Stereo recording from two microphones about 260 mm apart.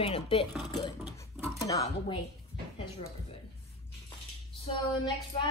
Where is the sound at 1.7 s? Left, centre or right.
Centre.